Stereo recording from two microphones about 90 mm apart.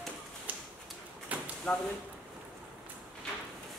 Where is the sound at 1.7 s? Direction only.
15° left (ahead or behind).